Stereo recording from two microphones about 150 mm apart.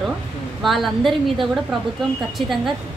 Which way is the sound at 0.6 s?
Centre (ahead or behind).